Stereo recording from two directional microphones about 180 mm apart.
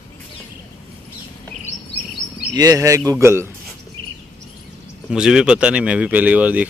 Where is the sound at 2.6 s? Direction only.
20° right (ahead or behind).